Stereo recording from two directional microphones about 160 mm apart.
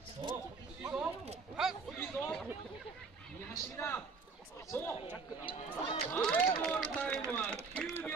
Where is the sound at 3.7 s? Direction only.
10° left (ahead or behind).